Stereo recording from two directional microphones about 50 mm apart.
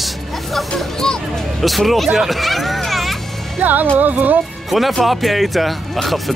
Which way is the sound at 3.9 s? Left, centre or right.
Right.